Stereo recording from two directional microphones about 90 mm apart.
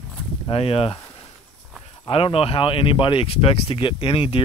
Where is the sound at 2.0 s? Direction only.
90° left.